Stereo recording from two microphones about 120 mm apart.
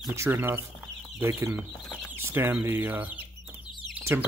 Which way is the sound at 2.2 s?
20° right (ahead or behind).